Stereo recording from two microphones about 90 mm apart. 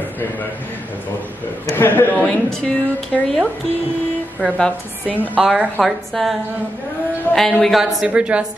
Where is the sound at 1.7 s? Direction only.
25° left (ahead or behind).